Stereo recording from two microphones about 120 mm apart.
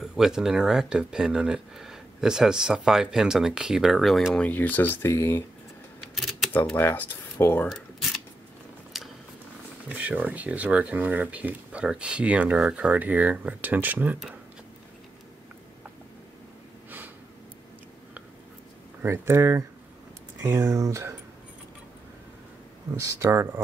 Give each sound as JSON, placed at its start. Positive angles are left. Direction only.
{"t": 0.0, "sound": "speech", "side_deg": -5}
{"t": 4.5, "sound": "speech", "side_deg": 15}
{"t": 6.1, "sound": "camera", "side_deg": 0}
{"t": 6.5, "sound": "speech", "side_deg": 15}
{"t": 8.9, "sound": "a sound", "side_deg": 0}
{"t": 9.8, "sound": "speech", "side_deg": -10}
{"t": 19.0, "sound": "speech", "side_deg": -20}
{"t": 22.9, "sound": "speech", "side_deg": -25}